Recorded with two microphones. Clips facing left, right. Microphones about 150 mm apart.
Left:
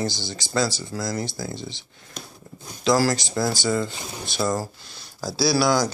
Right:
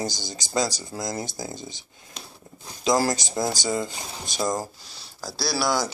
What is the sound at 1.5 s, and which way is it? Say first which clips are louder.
Speech: left 3 dB; 45° right (ahead or behind).